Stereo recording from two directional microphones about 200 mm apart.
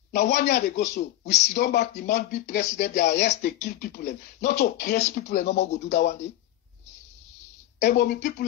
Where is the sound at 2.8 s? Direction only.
35° left (ahead or behind).